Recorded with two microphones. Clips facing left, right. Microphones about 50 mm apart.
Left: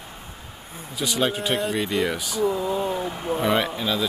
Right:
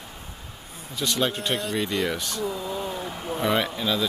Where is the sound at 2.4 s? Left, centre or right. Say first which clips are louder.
Left 10 dB; centre.